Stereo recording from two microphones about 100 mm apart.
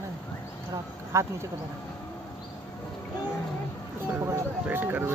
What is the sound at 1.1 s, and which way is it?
Speech, 30° right (ahead or behind).